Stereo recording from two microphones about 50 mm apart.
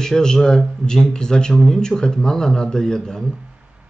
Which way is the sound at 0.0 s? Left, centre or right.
Centre.